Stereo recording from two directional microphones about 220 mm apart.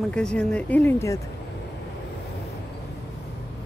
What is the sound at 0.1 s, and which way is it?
Speech, 5° left (ahead or behind).